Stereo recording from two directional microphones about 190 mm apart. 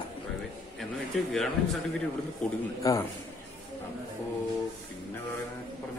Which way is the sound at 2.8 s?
15° left (ahead or behind).